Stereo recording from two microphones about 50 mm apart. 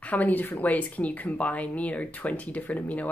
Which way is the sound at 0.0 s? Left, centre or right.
Left.